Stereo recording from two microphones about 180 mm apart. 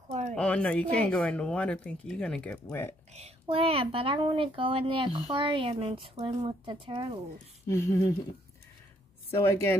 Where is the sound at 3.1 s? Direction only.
35° right (ahead or behind).